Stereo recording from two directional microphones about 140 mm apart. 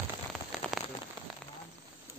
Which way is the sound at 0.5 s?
Centre (ahead or behind).